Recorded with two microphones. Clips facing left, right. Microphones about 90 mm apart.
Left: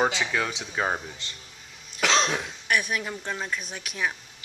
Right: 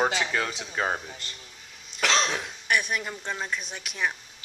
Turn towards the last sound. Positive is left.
turn(degrees=0)  # may be behind; listen again after turning